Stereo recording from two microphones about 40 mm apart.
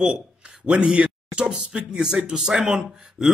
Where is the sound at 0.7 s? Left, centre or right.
Right.